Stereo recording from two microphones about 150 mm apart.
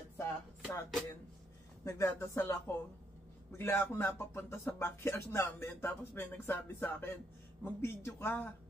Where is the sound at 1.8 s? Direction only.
20° left (ahead or behind).